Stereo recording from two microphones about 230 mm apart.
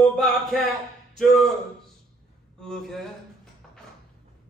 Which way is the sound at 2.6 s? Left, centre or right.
Centre.